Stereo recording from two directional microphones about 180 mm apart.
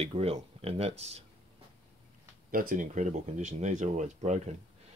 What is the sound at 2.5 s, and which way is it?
Speech, 50° right (ahead or behind).